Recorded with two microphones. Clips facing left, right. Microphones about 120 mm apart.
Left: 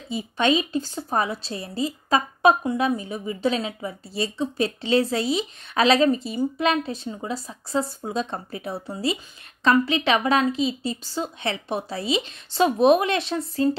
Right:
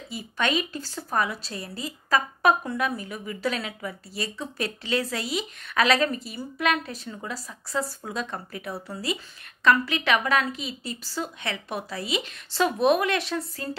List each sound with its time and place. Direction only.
0.1 s a woman's voice: 25° left (ahead or behind)